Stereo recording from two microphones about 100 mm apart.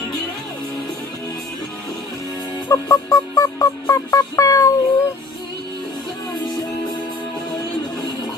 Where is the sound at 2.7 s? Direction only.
35° left (ahead or behind).